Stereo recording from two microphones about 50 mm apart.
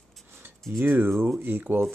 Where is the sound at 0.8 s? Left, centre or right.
Right.